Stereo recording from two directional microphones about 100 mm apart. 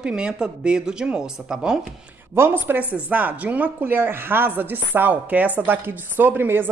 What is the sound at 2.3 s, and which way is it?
A woman's voice, 20° right (ahead or behind).